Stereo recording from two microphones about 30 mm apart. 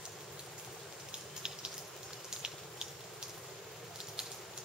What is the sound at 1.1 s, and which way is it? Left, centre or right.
Raindrop, right.